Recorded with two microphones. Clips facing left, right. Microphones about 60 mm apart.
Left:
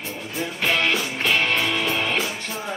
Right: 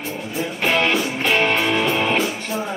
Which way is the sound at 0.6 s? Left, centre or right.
Centre.